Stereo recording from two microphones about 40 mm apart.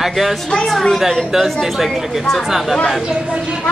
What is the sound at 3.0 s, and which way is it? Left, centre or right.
Speech, centre.